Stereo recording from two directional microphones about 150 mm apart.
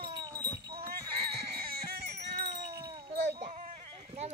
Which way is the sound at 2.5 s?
35° right (ahead or behind).